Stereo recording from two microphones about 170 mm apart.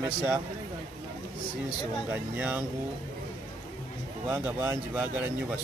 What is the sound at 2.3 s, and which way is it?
Speech, 10° right (ahead or behind).